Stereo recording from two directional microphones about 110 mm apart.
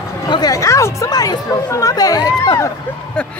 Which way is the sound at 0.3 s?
35° left (ahead or behind).